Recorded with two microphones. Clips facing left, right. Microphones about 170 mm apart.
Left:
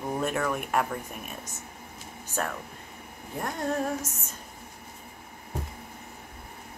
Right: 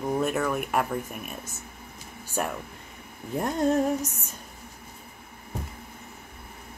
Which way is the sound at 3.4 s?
25° right (ahead or behind).